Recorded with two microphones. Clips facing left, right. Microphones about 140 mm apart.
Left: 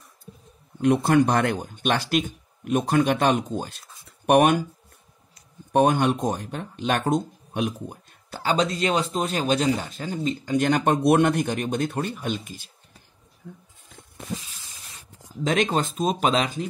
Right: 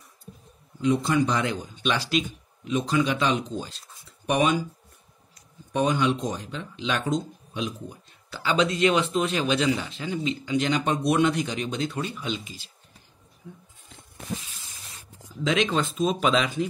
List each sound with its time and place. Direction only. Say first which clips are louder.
0.7 s speech: left 4 dB; 60° left (ahead or behind)
5.7 s speech: left 4 dB; 55° left (ahead or behind)
15.4 s speech: left 1 dB; 45° left (ahead or behind)